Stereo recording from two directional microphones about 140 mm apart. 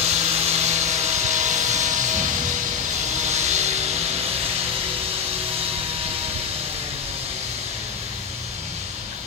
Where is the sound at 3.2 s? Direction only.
55° right (ahead or behind).